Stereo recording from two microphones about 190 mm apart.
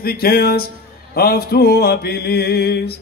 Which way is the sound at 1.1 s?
55° left (ahead or behind).